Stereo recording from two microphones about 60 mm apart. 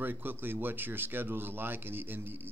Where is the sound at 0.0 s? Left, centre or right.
Right.